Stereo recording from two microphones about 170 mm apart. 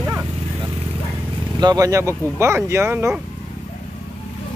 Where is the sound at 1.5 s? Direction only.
20° right (ahead or behind).